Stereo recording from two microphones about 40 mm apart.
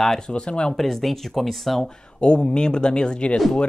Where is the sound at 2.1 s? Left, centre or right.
Left.